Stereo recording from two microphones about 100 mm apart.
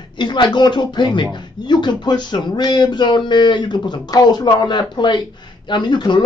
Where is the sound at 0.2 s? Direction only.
50° left (ahead or behind).